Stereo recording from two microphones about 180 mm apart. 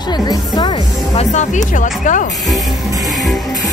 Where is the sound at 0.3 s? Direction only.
25° left (ahead or behind).